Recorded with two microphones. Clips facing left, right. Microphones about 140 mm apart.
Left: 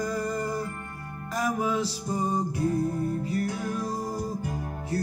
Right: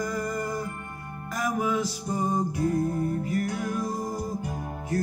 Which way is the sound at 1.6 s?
30° left (ahead or behind).